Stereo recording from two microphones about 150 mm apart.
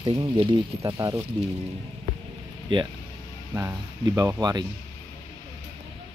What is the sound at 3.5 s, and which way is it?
Speech, 20° right (ahead or behind).